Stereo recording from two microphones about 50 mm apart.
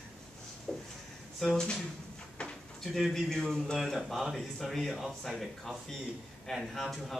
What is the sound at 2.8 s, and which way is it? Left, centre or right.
Speech, centre.